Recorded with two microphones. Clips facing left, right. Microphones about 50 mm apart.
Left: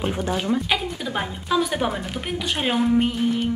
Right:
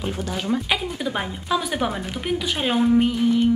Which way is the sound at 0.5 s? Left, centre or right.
Centre.